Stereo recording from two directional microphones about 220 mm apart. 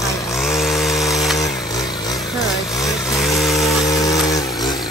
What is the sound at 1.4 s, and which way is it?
Vehicle, 15° left (ahead or behind).